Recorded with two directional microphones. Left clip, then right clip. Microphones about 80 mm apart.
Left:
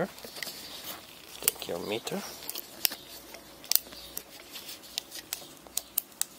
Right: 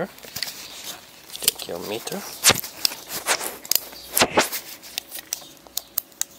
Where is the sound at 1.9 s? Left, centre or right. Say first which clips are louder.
Right 4 dB; centre.